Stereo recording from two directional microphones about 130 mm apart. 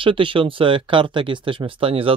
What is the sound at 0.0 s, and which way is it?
Speech, 40° right (ahead or behind).